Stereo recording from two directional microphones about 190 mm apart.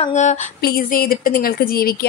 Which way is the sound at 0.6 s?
50° left (ahead or behind).